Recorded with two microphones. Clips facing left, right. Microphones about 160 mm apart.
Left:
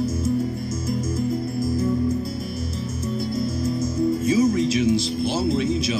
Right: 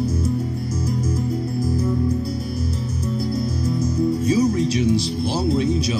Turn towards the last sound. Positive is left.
turn(degrees=-35)  # may be behind; listen again after turning